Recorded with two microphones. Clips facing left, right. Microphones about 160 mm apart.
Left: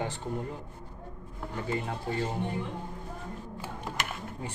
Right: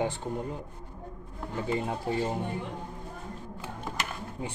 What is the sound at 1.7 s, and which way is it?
Speech, 15° right (ahead or behind).